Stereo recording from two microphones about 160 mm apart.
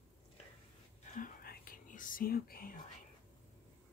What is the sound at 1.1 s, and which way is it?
Whispering, 65° left (ahead or behind).